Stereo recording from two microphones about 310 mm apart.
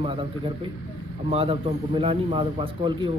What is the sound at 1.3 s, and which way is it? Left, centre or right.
A man's voice, centre.